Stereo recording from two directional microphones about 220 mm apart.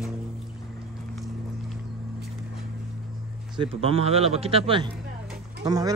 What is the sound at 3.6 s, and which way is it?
A man's voice, 25° right (ahead or behind).